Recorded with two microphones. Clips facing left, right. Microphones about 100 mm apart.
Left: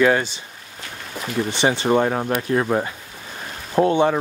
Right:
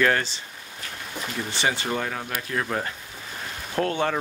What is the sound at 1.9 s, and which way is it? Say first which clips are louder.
Speech: left 10 dB; 35° left (ahead or behind).